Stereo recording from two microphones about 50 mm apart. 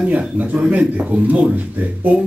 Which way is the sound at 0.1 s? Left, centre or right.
Right.